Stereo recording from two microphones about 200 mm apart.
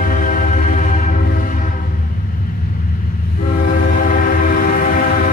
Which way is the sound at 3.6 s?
45° left (ahead or behind).